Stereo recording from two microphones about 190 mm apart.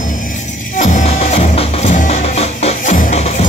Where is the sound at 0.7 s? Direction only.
40° left (ahead or behind).